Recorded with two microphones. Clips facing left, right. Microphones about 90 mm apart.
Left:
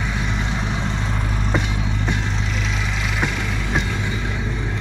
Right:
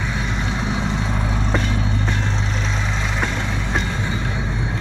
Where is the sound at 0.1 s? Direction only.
Centre (ahead or behind).